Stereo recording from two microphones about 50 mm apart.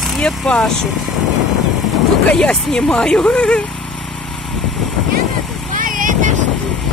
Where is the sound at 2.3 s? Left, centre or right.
Centre.